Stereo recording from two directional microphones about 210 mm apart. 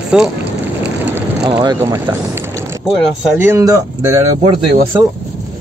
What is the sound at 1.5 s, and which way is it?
Speech, 20° right (ahead or behind).